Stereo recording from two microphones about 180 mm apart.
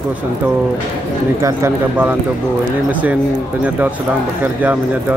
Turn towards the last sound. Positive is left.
turn(degrees=-10)  # may be behind; listen again after turning